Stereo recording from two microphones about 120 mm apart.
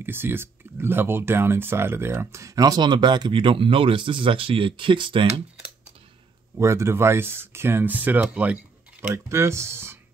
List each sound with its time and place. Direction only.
0.0 s speech: 20° right (ahead or behind); by 5.2 s 45° right (ahead or behind)
6.5 s speech: 25° right (ahead or behind)
9.1 s speech: 25° right (ahead or behind)